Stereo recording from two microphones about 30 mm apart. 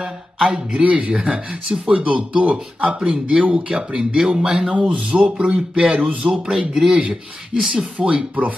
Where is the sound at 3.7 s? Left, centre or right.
Right.